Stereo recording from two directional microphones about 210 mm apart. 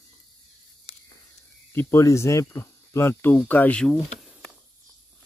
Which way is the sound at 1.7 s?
15° left (ahead or behind).